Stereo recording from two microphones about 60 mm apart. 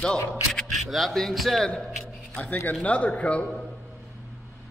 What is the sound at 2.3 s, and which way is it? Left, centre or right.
A man's voice, left.